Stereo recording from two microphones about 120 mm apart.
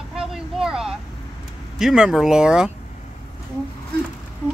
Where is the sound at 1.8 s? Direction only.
5° right (ahead or behind).